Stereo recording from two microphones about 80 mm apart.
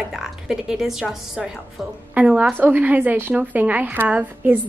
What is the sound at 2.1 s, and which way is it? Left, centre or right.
A woman's voice, centre.